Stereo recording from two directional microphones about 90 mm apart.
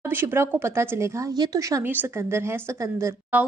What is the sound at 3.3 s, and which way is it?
Speech, 15° right (ahead or behind).